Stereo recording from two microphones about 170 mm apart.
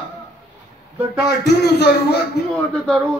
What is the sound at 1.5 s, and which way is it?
Speech, 75° left (ahead or behind).